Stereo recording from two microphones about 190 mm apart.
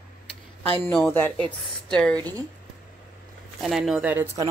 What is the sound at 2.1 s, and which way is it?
Speech, 20° right (ahead or behind).